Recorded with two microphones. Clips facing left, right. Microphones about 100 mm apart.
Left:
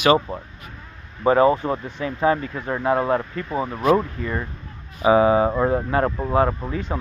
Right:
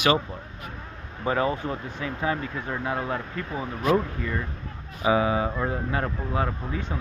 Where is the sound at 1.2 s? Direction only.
35° left (ahead or behind).